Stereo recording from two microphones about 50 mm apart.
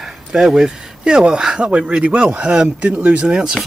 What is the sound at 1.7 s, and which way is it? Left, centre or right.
Speech, right.